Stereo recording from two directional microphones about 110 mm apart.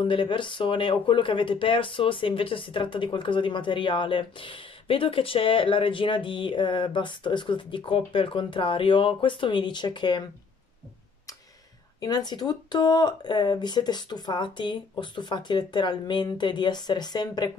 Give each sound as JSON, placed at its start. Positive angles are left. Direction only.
{"t": 0.0, "sound": "speech", "side_deg": 50}
{"t": 12.0, "sound": "speech", "side_deg": 40}